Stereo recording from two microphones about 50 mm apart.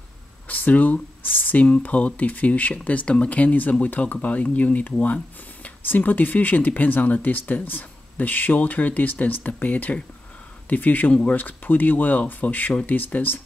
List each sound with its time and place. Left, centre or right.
0.5 s speech: left